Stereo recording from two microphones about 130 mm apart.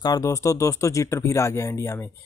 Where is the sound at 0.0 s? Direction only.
30° left (ahead or behind).